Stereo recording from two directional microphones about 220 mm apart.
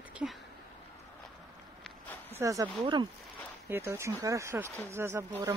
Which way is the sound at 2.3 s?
15° right (ahead or behind).